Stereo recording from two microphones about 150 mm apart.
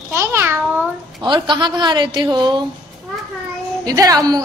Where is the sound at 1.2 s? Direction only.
30° right (ahead or behind).